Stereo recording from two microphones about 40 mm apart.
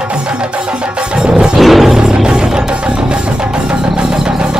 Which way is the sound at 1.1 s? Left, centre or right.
Right.